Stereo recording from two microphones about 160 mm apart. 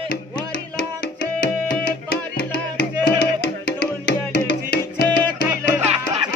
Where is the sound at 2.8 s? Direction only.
90° left.